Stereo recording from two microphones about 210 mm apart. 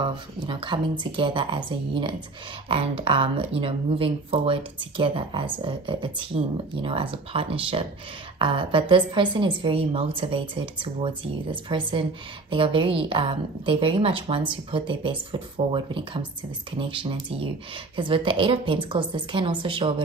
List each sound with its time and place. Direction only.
0.0 s a woman's voice: 25° right (ahead or behind)